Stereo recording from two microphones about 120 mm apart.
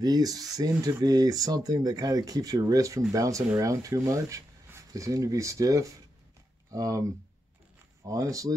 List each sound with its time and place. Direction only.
0.0 s speech: 30° right (ahead or behind)